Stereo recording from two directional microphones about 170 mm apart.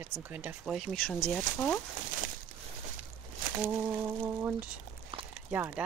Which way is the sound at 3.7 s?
10° right (ahead or behind).